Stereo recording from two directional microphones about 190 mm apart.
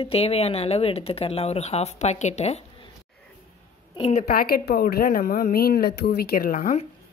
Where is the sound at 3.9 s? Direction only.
30° left (ahead or behind).